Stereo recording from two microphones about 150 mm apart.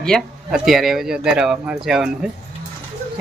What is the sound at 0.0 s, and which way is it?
Speech, centre (ahead or behind).